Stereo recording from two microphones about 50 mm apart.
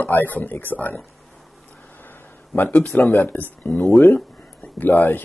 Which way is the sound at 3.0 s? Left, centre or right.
Left.